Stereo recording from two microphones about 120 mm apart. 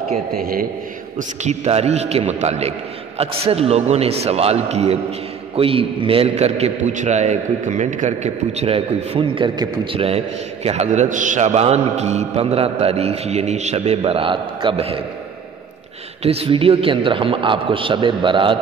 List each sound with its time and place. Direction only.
1.1 s a man's voice: 75° right (ahead or behind)
5.6 s a man's voice: 50° right (ahead or behind)
16.2 s a man's voice: 55° right (ahead or behind)